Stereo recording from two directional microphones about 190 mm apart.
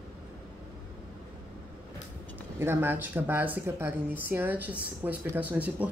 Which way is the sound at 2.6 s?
10° right (ahead or behind).